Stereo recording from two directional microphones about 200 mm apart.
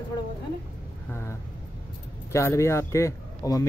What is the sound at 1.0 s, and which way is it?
Vehicle, 10° left (ahead or behind).